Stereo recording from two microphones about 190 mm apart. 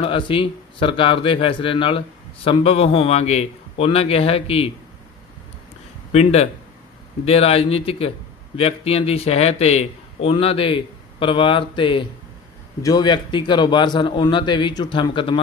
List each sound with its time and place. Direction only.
0.0 s speech: 30° left (ahead or behind)
6.1 s a man's voice: 35° left (ahead or behind)